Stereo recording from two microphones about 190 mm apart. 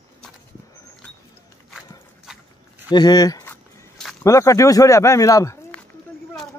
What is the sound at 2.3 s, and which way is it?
Dog, 5° right (ahead or behind).